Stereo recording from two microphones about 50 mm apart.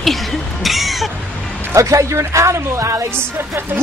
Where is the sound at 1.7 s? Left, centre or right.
Right.